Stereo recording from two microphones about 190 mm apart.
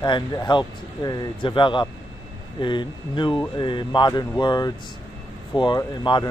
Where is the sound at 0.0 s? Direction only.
25° left (ahead or behind).